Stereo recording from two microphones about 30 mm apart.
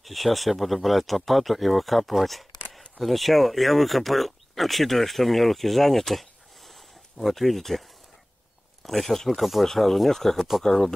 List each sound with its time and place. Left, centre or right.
0.0 s speech: centre
6.7 s a sound: centre
8.8 s speech: centre